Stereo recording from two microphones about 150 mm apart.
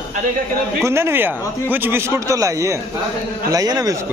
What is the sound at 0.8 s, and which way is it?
Speech, 15° right (ahead or behind).